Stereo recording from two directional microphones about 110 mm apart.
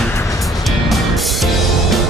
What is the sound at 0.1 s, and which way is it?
Music, 25° left (ahead or behind).